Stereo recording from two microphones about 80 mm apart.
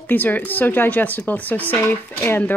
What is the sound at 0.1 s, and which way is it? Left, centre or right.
Speech, left.